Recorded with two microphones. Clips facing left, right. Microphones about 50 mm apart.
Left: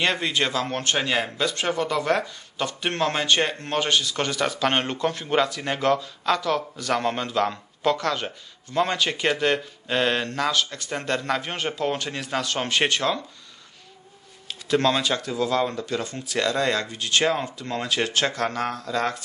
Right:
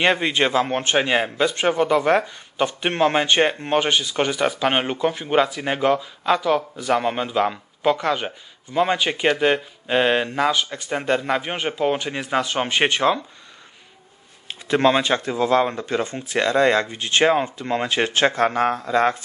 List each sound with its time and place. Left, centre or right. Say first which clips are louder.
0.0 s speech: right 5 dB; right
14.5 s speech: right 4 dB; right